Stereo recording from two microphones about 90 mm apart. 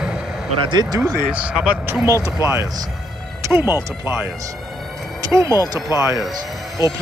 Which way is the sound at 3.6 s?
25° right (ahead or behind).